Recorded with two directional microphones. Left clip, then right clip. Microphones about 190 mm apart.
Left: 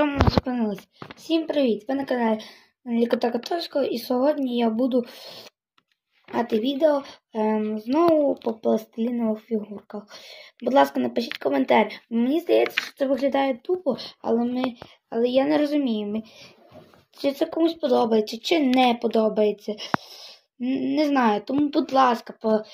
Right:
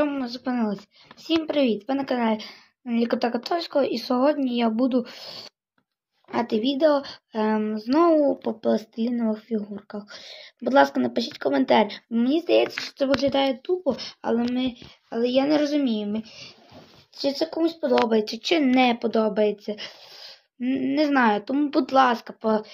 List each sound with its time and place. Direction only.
0.0 s a sound: centre (ahead or behind)
1.2 s a woman's voice: centre (ahead or behind)
2.9 s speech: 25° right (ahead or behind)
3.2 s a woman's voice: 5° right (ahead or behind)
4.1 s a sound: 35° right (ahead or behind)
5.1 s a woman's voice: centre (ahead or behind)
7.0 s a sound: 30° right (ahead or behind)
7.6 s a woman's voice: centre (ahead or behind)
8.1 s speech: 25° right (ahead or behind)
9.1 s a woman's voice: 15° right (ahead or behind)
13.9 s a woman's voice: centre (ahead or behind)
20.6 s speech: 25° right (ahead or behind)
20.9 s a woman's voice: 5° left (ahead or behind)
22.1 s speech: 20° right (ahead or behind)